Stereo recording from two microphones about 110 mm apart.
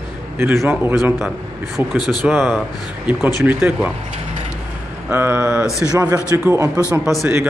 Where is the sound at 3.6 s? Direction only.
10° right (ahead or behind).